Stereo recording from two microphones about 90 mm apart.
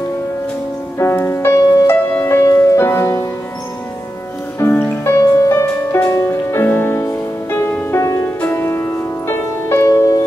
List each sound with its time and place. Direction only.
0.9 s music: 30° left (ahead or behind)
4.6 s music: 25° left (ahead or behind)
5.1 s music: 40° left (ahead or behind)
8.4 s music: 25° left (ahead or behind)
9.8 s music: 40° left (ahead or behind)